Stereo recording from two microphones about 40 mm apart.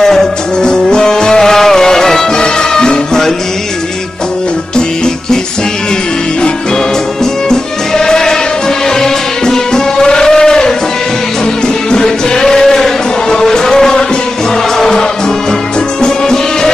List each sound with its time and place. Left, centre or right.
0.0 s music: centre
4.7 s music: centre
7.4 s music: centre